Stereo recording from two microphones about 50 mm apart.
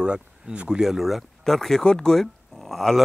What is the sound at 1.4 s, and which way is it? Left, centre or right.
Speech, centre.